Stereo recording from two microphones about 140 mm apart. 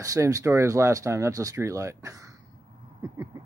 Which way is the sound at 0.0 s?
25° right (ahead or behind).